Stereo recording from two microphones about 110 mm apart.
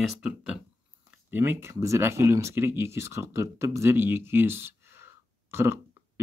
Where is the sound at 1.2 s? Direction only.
20° right (ahead or behind).